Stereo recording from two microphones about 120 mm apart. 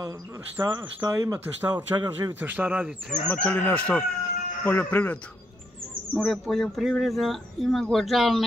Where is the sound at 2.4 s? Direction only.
15° right (ahead or behind).